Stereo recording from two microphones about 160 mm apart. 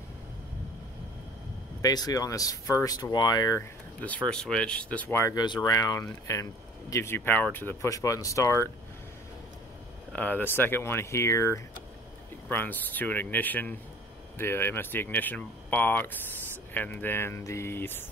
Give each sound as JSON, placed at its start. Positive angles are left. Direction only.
{"t": 1.8, "sound": "speech", "side_deg": 25}
{"t": 4.0, "sound": "speech", "side_deg": 10}
{"t": 10.1, "sound": "speech", "side_deg": 10}